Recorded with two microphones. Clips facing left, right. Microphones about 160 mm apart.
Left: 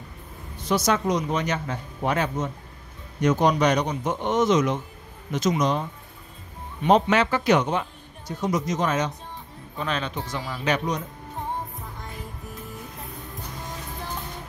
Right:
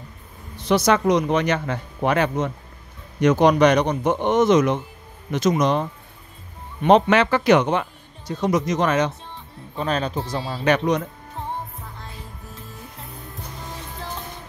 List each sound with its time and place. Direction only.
0.7 s speech: 70° right (ahead or behind)
9.8 s speech: 40° right (ahead or behind)
10.6 s speech: 65° right (ahead or behind)